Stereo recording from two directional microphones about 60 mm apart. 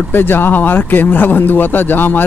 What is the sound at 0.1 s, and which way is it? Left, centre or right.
Speech, left.